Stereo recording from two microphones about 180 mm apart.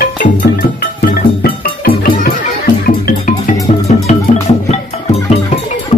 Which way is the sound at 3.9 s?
45° left (ahead or behind).